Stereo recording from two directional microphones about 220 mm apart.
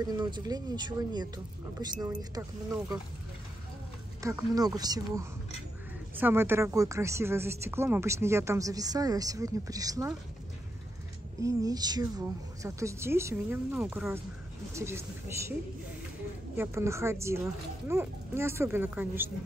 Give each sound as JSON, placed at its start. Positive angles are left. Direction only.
{"t": 0.0, "sound": "a woman's voice", "side_deg": -20}
{"t": 4.2, "sound": "a woman's voice", "side_deg": -15}
{"t": 11.4, "sound": "a woman's voice", "side_deg": -15}
{"t": 16.5, "sound": "a woman's voice", "side_deg": -10}